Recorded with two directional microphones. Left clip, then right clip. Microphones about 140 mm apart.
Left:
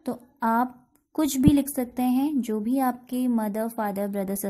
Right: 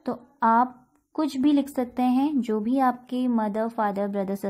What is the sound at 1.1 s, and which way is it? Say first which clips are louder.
A woman's voice: left 1 dB; 50° left (ahead or behind).